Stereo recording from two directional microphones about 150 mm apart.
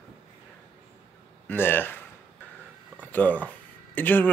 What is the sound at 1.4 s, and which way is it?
Speech, 15° left (ahead or behind).